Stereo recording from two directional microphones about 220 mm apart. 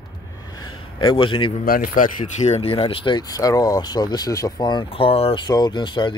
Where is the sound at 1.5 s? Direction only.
40° left (ahead or behind); by 6.1 s 20° left (ahead or behind).